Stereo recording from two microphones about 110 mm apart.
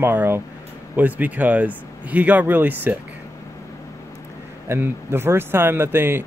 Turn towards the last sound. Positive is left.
turn(degrees=-20)  # may be behind; listen again after turning